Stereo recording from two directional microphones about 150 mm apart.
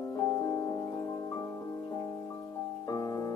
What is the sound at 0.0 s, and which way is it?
Music, 20° left (ahead or behind).